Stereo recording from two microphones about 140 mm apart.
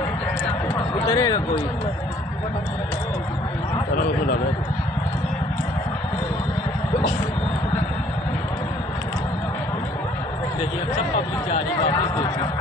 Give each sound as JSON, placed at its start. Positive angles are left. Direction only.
{"t": 1.1, "sound": "speech", "side_deg": 25}